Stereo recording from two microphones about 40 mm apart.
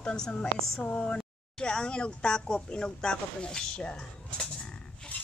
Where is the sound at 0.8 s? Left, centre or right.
Left.